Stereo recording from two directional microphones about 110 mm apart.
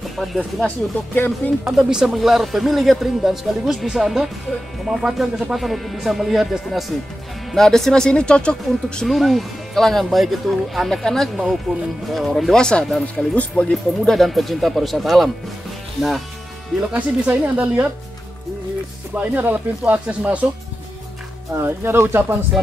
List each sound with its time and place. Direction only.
0.2 s speech: 5° left (ahead or behind)
1.6 s speech: 5° right (ahead or behind)
16.9 s speech: 15° right (ahead or behind)
19.1 s speech: 15° right (ahead or behind)
21.5 s speech: 20° right (ahead or behind)